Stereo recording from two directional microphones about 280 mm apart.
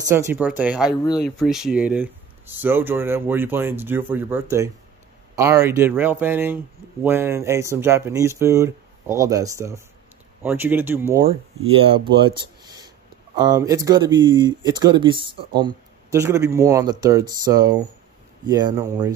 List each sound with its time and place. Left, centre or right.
0.0 s speech: centre
11.1 s speech: centre